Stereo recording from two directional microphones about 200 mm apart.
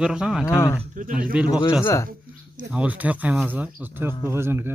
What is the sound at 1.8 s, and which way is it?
Speech, 15° left (ahead or behind).